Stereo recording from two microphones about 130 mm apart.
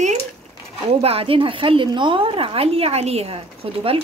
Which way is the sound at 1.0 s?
45° right (ahead or behind).